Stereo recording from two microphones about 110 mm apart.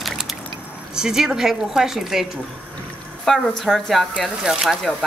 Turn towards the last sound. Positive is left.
turn(degrees=-5)  # may be behind; listen again after turning